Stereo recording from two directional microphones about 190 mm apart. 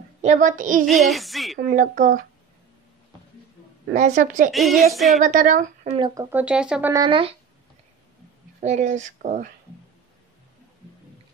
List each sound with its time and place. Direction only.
0.2 s a woman's voice: 40° right (ahead or behind)
0.8 s music: centre (ahead or behind)
1.6 s a woman's voice: 45° right (ahead or behind)
3.9 s speech: 40° right (ahead or behind)
4.5 s music: centre (ahead or behind)
5.2 s a woman's voice: 45° right (ahead or behind)
5.9 s speech: 25° right (ahead or behind)
6.3 s music: 5° right (ahead or behind)
6.9 s speech: 25° right (ahead or behind)
8.5 s speech: 40° right (ahead or behind)